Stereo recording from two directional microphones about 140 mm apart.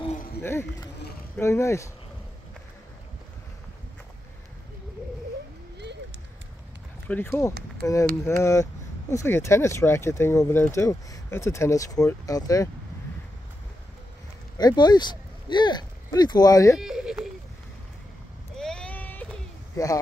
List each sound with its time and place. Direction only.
0.4 s speech: 20° left (ahead or behind)
7.1 s speech: 15° left (ahead or behind)
14.6 s speech: 30° left (ahead or behind)
16.8 s a sound: 5° right (ahead or behind)
18.6 s a sound: 5° left (ahead or behind)
19.8 s speech: 25° left (ahead or behind)